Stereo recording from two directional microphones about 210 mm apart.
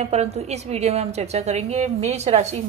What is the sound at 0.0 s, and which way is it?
Speech, 30° right (ahead or behind).